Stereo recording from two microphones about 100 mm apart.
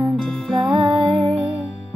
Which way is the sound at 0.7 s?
55° right (ahead or behind).